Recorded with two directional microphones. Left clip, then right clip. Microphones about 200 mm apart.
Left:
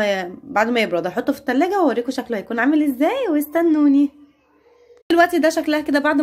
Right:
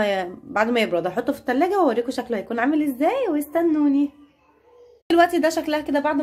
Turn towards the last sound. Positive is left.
turn(degrees=20)  # may be behind; listen again after turning